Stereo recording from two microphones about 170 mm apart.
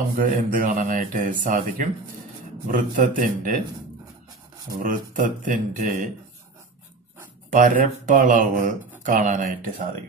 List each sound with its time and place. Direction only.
0.2 s speech: 55° right (ahead or behind)
4.8 s speech: 50° right (ahead or behind)
7.5 s speech: 50° right (ahead or behind)